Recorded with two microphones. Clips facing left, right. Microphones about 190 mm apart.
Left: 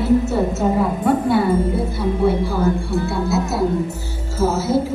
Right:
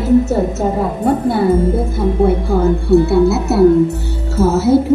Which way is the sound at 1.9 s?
55° right (ahead or behind).